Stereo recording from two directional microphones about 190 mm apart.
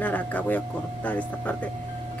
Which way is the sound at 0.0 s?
10° left (ahead or behind).